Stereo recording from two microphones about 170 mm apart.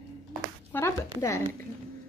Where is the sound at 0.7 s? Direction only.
15° left (ahead or behind).